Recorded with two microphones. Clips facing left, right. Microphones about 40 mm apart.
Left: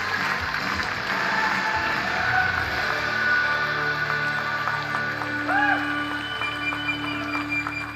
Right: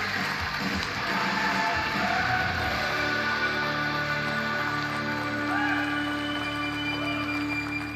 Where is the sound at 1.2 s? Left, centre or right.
Left.